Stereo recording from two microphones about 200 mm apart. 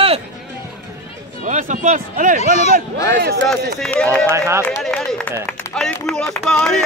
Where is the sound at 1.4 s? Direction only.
40° right (ahead or behind).